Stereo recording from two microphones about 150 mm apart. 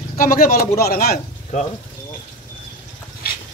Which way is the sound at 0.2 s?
75° left (ahead or behind).